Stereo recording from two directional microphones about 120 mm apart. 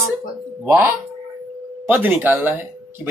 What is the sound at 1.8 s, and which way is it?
Speech, 15° right (ahead or behind).